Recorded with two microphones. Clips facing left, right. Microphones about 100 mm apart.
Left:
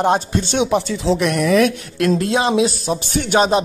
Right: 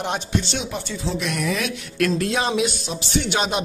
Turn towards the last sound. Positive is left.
turn(degrees=40)  # may be behind; listen again after turning